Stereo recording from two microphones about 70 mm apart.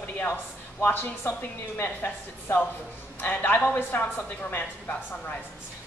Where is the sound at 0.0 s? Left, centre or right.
Left.